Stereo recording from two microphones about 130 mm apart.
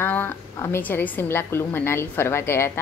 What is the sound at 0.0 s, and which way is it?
A woman's voice, 15° left (ahead or behind).